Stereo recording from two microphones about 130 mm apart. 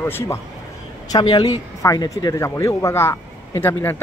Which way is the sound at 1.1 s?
30° left (ahead or behind).